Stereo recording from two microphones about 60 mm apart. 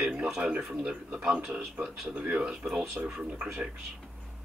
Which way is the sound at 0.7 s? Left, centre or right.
Centre.